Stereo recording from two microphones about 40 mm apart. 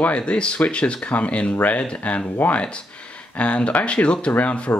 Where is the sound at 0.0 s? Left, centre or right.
Left.